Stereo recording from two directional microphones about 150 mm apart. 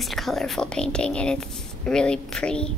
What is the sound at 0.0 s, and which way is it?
A woman's voice, centre (ahead or behind).